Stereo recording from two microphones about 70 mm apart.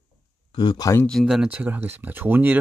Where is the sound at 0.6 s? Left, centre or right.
Left.